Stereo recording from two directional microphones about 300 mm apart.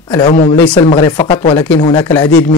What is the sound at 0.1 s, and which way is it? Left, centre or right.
Speech, centre.